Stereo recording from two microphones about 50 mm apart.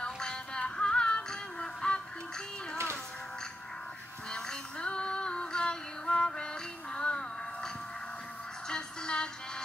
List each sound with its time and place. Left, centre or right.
0.0 s synthetic singing: centre
4.3 s female singing: centre
8.6 s music: centre